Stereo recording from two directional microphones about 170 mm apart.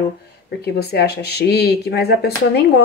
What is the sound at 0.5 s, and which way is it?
Speech, 70° left (ahead or behind).